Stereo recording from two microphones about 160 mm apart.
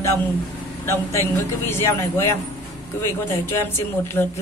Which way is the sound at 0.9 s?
15° left (ahead or behind).